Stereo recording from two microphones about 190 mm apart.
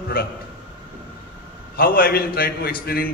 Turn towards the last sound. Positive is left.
turn(degrees=55)  # may be behind; listen again after turning